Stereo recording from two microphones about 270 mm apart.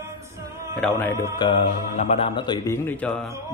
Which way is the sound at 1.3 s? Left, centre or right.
Centre.